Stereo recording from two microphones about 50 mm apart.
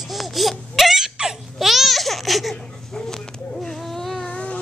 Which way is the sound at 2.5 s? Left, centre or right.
Centre.